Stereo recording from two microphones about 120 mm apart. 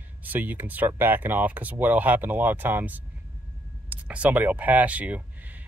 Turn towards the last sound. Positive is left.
turn(degrees=-15)  # may be behind; listen again after turning